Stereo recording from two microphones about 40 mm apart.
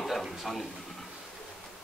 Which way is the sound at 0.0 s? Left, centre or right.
Centre.